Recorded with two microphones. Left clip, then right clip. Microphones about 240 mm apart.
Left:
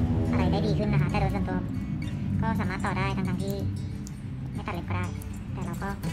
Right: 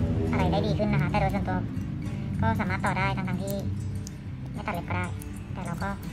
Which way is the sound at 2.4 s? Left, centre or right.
Right.